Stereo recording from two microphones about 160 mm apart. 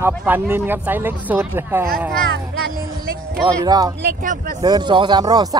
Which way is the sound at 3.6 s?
25° right (ahead or behind).